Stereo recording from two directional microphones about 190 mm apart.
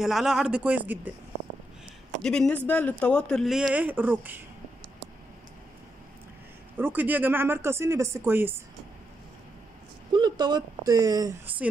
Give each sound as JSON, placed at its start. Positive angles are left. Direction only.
{"t": 0.0, "sound": "speech", "side_deg": 0}
{"t": 2.2, "sound": "speech", "side_deg": 5}
{"t": 6.8, "sound": "speech", "side_deg": -10}
{"t": 10.1, "sound": "speech", "side_deg": -20}